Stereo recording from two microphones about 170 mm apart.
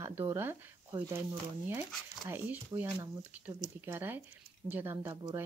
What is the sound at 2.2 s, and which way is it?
Speech, 10° right (ahead or behind).